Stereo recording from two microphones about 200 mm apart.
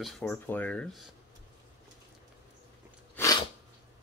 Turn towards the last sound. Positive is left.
turn(degrees=10)  # may be behind; listen again after turning